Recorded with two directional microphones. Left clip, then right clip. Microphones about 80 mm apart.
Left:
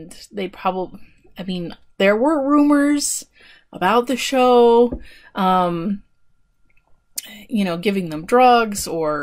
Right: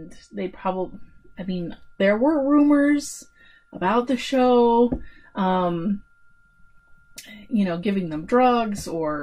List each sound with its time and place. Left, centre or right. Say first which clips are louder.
0.3 s speech: left 4 dB; left
7.2 s speech: left 2 dB; left